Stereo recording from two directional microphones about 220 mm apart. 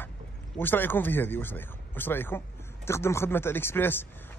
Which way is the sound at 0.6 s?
10° left (ahead or behind).